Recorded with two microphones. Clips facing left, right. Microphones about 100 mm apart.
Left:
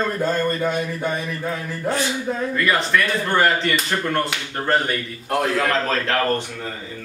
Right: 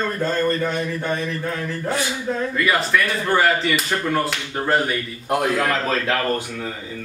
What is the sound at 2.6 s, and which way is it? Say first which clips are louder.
Speech: even; 5° right (ahead or behind).